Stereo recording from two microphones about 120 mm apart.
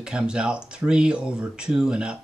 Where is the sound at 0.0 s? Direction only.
5° right (ahead or behind).